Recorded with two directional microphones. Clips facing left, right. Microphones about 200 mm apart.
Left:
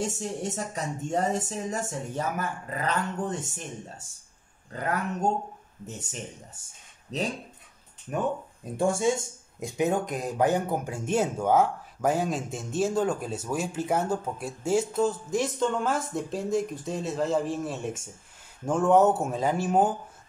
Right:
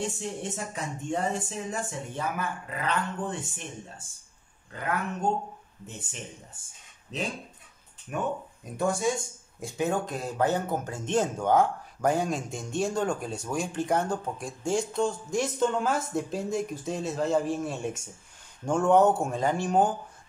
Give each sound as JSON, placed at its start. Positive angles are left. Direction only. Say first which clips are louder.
{"t": 0.0, "sound": "speech", "louder": "left 2 dB", "side_deg": 40}
{"t": 4.7, "sound": "speech", "louder": "left 4 dB", "side_deg": 40}
{"t": 6.5, "sound": "speech", "louder": "left 1 dB", "side_deg": 40}